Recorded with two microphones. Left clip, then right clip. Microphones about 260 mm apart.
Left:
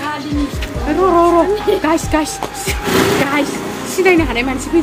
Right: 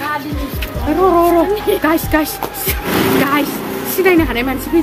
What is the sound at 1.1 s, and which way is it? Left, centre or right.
A woman's voice, centre.